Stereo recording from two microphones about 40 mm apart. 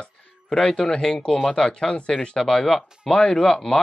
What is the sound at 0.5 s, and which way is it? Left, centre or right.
Speech, centre.